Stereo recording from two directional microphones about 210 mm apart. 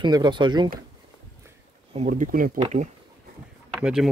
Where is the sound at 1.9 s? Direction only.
35° right (ahead or behind).